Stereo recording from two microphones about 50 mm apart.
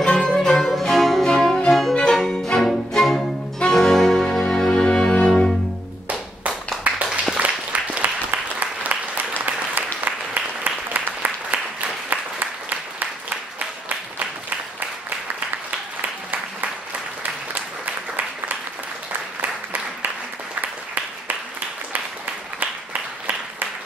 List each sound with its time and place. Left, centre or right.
0.0 s music: centre
6.8 s a sound: right
7.3 s applause: right
10.0 s applause: right